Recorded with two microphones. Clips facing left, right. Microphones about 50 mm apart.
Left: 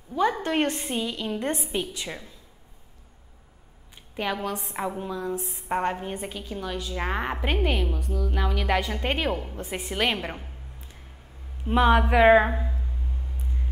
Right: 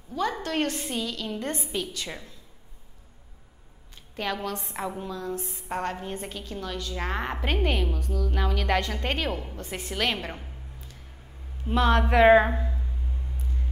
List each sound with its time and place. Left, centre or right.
0.1 s a woman's voice: left
2.0 s a woman's voice: centre
4.1 s a woman's voice: centre
11.6 s a woman's voice: centre
12.0 s speech: centre